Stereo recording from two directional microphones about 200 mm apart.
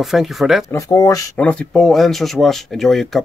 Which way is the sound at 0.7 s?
15° left (ahead or behind).